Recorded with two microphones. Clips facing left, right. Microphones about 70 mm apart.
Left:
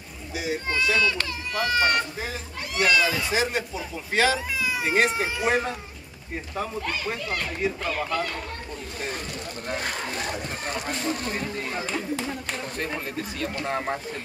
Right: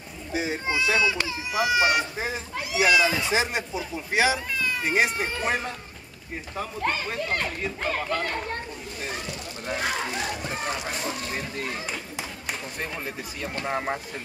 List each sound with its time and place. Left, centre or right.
0.3 s a child's voice: right
0.7 s speech: centre
3.2 s speech: right
4.6 s cat: centre
5.1 s speech: centre
6.8 s speech: right
11.8 s speech: centre